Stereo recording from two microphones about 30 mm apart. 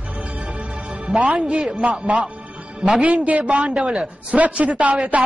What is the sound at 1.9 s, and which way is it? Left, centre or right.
A man's voice, right.